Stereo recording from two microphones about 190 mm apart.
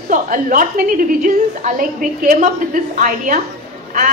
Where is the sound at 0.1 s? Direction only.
45° right (ahead or behind).